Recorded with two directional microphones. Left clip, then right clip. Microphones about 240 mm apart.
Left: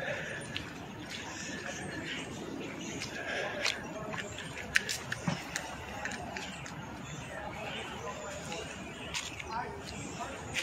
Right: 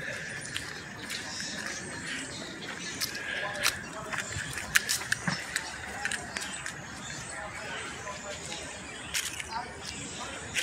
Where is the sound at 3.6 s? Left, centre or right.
Centre.